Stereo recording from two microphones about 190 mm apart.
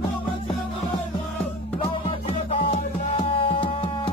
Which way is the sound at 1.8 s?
30° left (ahead or behind).